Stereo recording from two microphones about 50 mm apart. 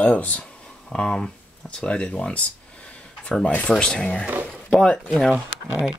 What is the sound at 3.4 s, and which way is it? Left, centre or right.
Speech, left.